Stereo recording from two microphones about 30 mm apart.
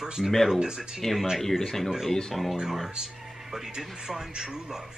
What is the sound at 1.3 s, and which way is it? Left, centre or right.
Speech, centre.